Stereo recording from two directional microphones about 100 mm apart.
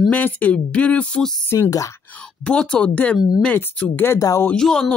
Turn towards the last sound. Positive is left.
turn(degrees=5)  # may be behind; listen again after turning